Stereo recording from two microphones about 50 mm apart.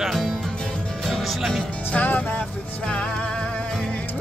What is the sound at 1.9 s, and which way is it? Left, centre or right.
Music, left.